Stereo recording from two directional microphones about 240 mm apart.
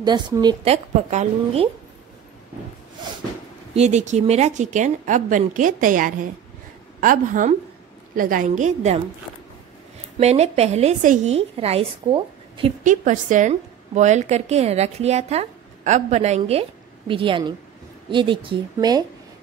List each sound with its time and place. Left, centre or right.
0.0 s a woman's voice: centre
3.7 s speech: right
10.1 s a woman's voice: right